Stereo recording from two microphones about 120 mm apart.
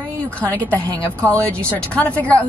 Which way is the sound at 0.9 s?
25° right (ahead or behind).